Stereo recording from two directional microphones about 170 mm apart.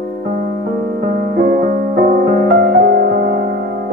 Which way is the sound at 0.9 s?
65° right (ahead or behind).